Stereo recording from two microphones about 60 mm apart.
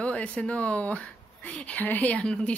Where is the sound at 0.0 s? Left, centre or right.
Left.